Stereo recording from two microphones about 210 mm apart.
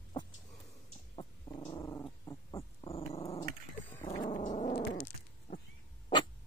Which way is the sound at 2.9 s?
30° left (ahead or behind).